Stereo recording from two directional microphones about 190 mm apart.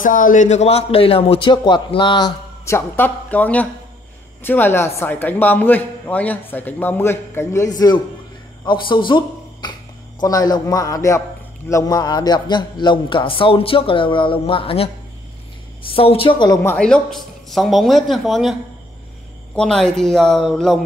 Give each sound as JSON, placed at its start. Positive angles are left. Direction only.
{"t": 0.0, "sound": "a man's voice", "side_deg": 45}
{"t": 15.9, "sound": "a man's voice", "side_deg": 30}
{"t": 16.7, "sound": "speech", "side_deg": 5}